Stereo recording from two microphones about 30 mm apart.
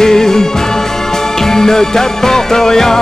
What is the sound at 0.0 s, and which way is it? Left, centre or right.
Music, centre.